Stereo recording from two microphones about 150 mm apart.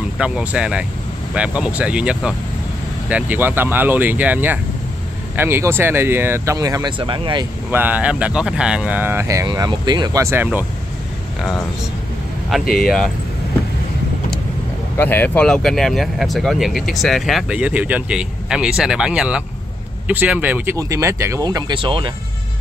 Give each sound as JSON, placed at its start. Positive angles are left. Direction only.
{"t": 0.2, "sound": "speech", "side_deg": -5}
{"t": 7.7, "sound": "speech", "side_deg": -10}
{"t": 12.7, "sound": "speech", "side_deg": 0}
{"t": 15.0, "sound": "speech", "side_deg": 15}